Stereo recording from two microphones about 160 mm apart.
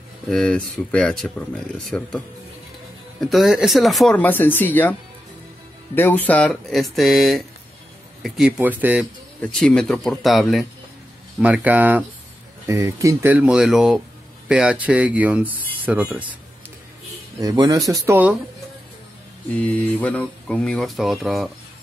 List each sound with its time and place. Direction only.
0.3 s speech: 5° left (ahead or behind)
5.9 s speech: 10° left (ahead or behind); by 9.0 s 10° right (ahead or behind)
9.4 s speech: 5° left (ahead or behind); by 16.3 s 10° right (ahead or behind)
17.4 s speech: 20° right (ahead or behind)
19.5 s speech: 10° left (ahead or behind)